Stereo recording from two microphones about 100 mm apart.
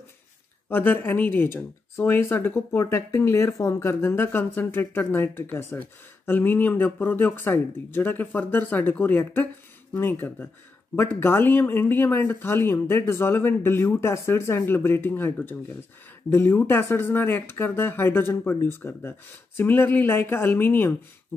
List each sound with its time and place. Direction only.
0.7 s speech: 20° left (ahead or behind)